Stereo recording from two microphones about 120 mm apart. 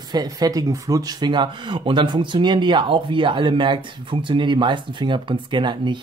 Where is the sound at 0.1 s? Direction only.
35° right (ahead or behind).